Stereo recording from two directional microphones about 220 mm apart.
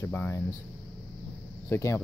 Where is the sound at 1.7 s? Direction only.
15° left (ahead or behind).